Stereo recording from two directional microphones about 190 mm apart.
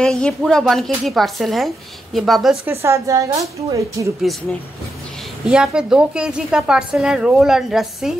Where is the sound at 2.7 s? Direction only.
15° right (ahead or behind).